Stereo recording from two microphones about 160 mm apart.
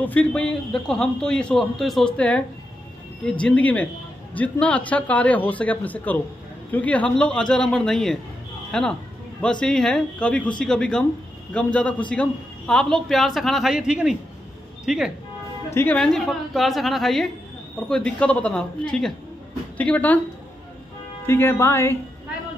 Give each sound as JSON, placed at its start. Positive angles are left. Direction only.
{"t": 0.0, "sound": "a man's voice", "side_deg": 10}
{"t": 15.7, "sound": "a man's voice", "side_deg": 10}
{"t": 21.3, "sound": "a man's voice", "side_deg": 15}